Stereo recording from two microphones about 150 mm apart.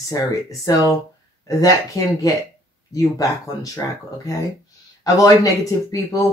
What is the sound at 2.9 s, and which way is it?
Speech, 25° left (ahead or behind).